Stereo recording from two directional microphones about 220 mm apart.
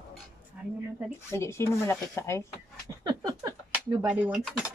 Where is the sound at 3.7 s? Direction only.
5° right (ahead or behind).